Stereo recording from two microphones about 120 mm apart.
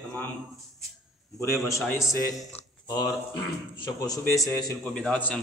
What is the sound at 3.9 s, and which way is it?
Speech, 30° left (ahead or behind).